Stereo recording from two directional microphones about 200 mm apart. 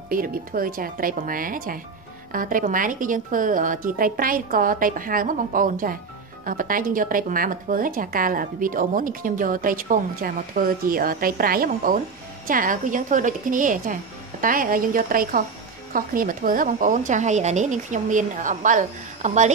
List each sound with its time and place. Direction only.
0.1 s a woman's voice: 45° right (ahead or behind)